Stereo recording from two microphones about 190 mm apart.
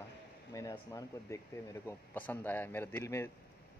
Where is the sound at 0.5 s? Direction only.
15° left (ahead or behind).